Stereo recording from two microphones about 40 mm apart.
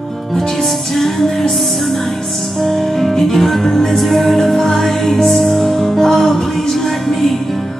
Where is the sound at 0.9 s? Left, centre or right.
Centre.